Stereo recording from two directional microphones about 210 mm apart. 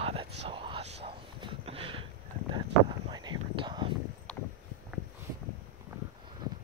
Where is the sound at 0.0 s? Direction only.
25° right (ahead or behind).